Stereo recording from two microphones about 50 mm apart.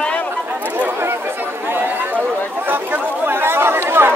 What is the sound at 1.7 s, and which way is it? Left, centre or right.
Chatter, right.